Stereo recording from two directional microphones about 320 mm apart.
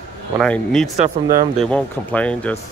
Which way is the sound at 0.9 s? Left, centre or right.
Right.